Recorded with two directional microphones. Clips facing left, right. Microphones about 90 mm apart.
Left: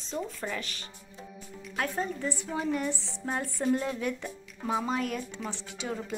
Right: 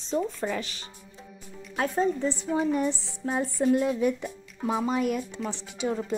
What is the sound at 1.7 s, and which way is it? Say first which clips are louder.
A woman's voice: right 6 dB; 25° right (ahead or behind).